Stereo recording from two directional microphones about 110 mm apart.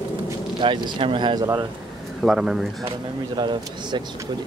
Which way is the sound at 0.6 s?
50° right (ahead or behind).